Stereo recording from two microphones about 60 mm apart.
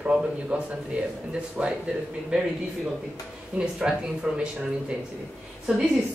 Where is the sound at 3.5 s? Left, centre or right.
Centre.